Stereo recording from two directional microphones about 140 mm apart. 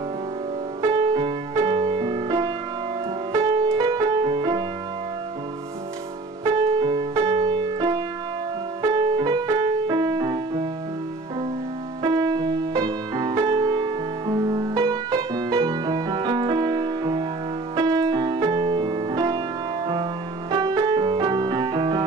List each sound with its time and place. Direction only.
0.8 s music: 30° right (ahead or behind)
6.8 s music: 35° right (ahead or behind)
7.4 s keyboard: 30° right (ahead or behind)
8.8 s music: 25° right (ahead or behind)
12.0 s music: 30° right (ahead or behind)
20.5 s music: 25° right (ahead or behind)